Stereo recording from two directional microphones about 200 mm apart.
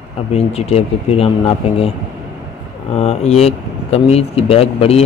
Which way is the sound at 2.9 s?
30° left (ahead or behind).